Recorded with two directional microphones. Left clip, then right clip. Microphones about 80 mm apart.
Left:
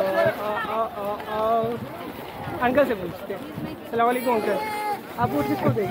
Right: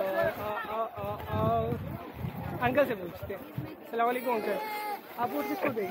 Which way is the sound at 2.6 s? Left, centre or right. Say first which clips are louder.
Left 6 dB; right.